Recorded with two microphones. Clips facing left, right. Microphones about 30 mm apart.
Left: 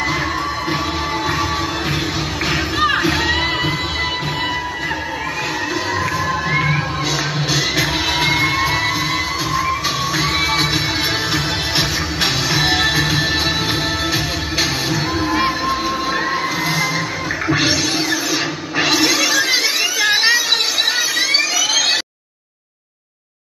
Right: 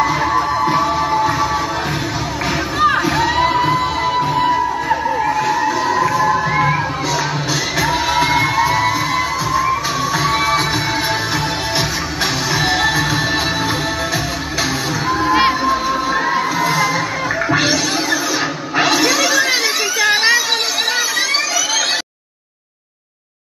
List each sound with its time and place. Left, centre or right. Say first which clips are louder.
0.0 s music: right 4 dB; centre
2.8 s music: right 3 dB; left
6.1 s music: right 4 dB; centre
8.2 s music: right 2 dB; left
10.3 s music: right 1 dB; left
12.2 s music: even; left
18.9 s a sound: even; centre